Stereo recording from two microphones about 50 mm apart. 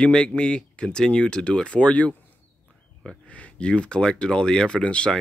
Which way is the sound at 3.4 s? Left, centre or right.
Left.